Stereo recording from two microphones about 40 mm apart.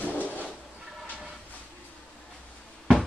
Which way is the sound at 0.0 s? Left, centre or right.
Left.